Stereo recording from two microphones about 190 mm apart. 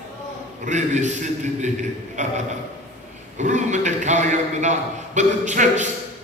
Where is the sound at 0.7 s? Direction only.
40° right (ahead or behind).